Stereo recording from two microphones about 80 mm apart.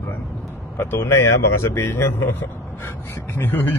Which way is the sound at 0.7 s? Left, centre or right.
Left.